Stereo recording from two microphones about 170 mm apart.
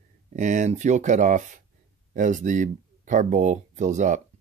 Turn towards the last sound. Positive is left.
turn(degrees=-45)  # may be behind; listen again after turning